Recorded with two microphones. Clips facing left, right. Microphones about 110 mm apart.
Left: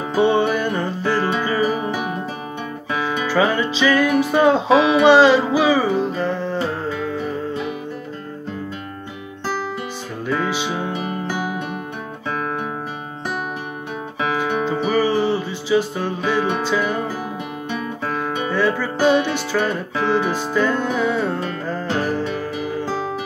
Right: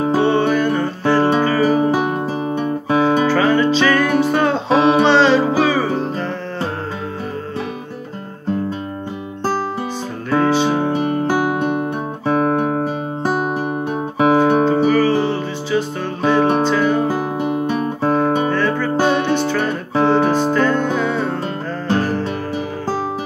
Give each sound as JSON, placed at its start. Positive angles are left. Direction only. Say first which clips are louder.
{"t": 0.2, "sound": "music", "louder": "left 2 dB", "side_deg": 15}
{"t": 1.0, "sound": "music", "louder": "right 6 dB", "side_deg": -20}
{"t": 1.4, "sound": "music", "louder": "right 5 dB", "side_deg": -35}
{"t": 2.6, "sound": "guitar", "louder": "right 8 dB", "side_deg": -40}
{"t": 3.3, "sound": "music", "louder": "right 4 dB", "side_deg": 10}
{"t": 10.9, "sound": "music", "louder": "right 7 dB", "side_deg": -40}
{"t": 12.4, "sound": "music", "louder": "right 9 dB", "side_deg": -40}
{"t": 14.9, "sound": "music", "louder": "right 3 dB", "side_deg": 15}
{"t": 16.3, "sound": "music", "louder": "right 7 dB", "side_deg": -50}
{"t": 16.7, "sound": "music", "louder": "right 4 dB", "side_deg": 10}
{"t": 17.1, "sound": "music", "louder": "right 8 dB", "side_deg": -40}
{"t": 18.5, "sound": "music", "louder": "right 1 dB", "side_deg": 10}
{"t": 20.0, "sound": "music", "louder": "right 6 dB", "side_deg": -45}
{"t": 20.5, "sound": "music", "louder": "right 3 dB", "side_deg": 10}